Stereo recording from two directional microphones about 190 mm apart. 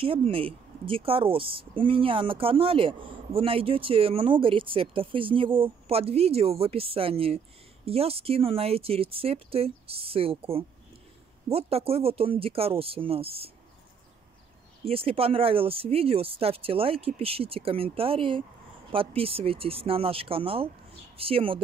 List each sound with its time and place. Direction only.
0.0 s a woman's voice: 30° right (ahead or behind)
14.9 s a woman's voice: 30° right (ahead or behind)